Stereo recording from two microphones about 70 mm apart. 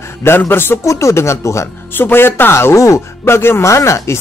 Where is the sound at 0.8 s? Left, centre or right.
Left.